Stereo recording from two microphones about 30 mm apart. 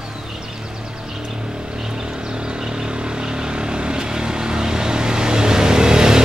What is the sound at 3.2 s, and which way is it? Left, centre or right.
Vehicle, right.